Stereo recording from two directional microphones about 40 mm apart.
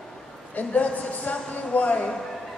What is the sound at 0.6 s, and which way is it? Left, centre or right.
Speech, left.